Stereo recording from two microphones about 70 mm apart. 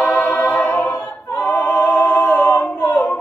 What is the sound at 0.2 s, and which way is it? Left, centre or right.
Music, left.